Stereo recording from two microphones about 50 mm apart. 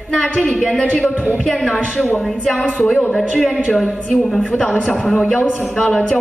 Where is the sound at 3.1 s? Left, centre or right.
Centre.